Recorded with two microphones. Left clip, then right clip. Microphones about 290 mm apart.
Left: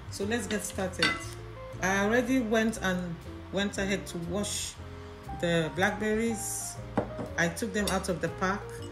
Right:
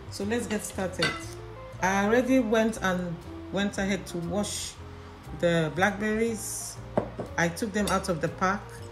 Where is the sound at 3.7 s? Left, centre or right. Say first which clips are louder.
Right 1 dB; right.